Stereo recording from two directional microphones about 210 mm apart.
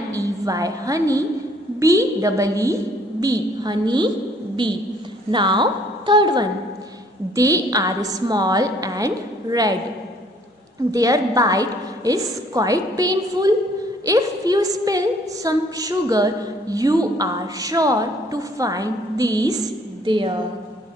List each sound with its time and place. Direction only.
0.1 s a woman's voice: 15° right (ahead or behind)
5.3 s a woman's voice: 20° right (ahead or behind)
10.9 s a woman's voice: 15° right (ahead or behind)